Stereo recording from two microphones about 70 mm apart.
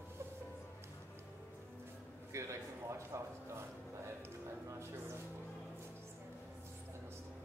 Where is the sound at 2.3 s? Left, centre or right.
Right.